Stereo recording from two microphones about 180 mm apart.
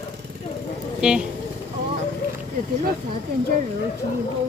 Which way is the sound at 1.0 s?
5° right (ahead or behind).